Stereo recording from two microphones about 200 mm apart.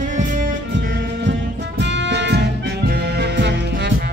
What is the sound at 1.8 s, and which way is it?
Music, 60° right (ahead or behind).